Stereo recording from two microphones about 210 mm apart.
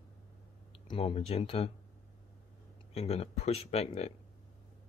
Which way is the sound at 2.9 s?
30° left (ahead or behind).